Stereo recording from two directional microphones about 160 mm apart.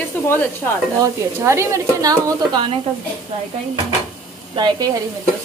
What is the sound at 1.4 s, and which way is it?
A woman's voice, 15° right (ahead or behind).